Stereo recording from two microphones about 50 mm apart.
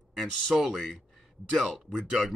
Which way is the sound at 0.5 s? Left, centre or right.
Centre.